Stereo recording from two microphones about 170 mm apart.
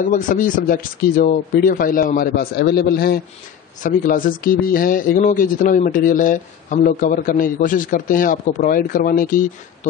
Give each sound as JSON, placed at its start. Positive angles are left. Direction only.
{"t": 0.0, "sound": "speech", "side_deg": 50}
{"t": 3.8, "sound": "speech", "side_deg": 50}